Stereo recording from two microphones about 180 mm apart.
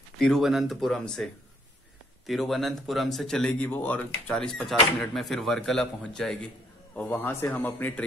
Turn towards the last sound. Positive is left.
turn(degrees=10)  # may be behind; listen again after turning